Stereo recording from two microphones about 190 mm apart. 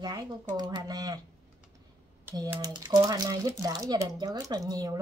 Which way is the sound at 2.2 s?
15° right (ahead or behind).